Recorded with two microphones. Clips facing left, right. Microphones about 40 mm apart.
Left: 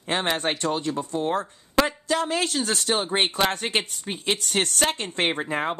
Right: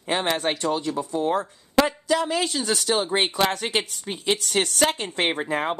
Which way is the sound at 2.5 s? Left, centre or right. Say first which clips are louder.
Right 1 dB; left.